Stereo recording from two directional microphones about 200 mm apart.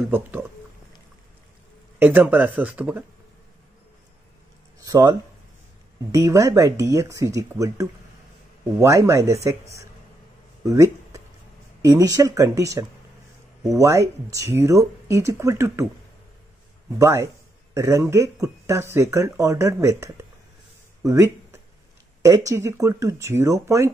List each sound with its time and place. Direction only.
0.1 s speech: 10° right (ahead or behind)
2.0 s speech: 10° right (ahead or behind)
4.7 s a sound: 20° right (ahead or behind)
6.1 s speech: 15° right (ahead or behind)
10.6 s a sound: 15° right (ahead or behind)
11.8 s speech: 15° right (ahead or behind)
17.0 s speech: 15° right (ahead or behind)
21.0 s a sound: 15° right (ahead or behind)
22.5 s speech: 15° right (ahead or behind)